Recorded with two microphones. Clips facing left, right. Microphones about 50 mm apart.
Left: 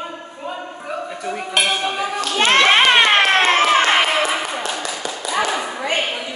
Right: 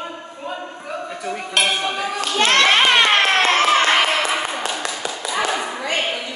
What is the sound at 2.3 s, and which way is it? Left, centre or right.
Children playing, centre.